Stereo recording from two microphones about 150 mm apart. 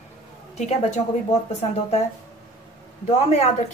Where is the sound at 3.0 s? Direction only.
50° left (ahead or behind).